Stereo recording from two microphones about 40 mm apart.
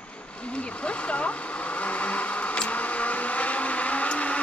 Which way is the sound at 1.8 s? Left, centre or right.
Left.